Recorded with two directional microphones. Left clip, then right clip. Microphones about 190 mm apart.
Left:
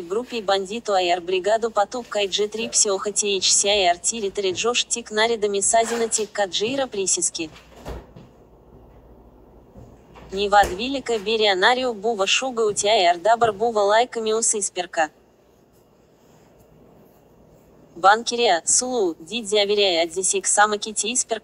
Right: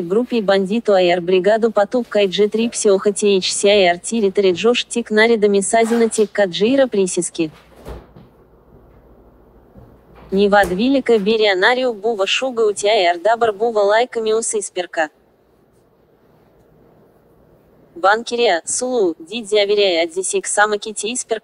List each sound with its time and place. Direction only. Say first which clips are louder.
0.5 s speech: right 6 dB; centre (ahead or behind)
10.3 s speech: right 4 dB; centre (ahead or behind)
18.0 s speech: right 2 dB; centre (ahead or behind)